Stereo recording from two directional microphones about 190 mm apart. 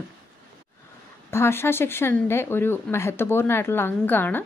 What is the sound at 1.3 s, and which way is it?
A woman's voice, 15° left (ahead or behind).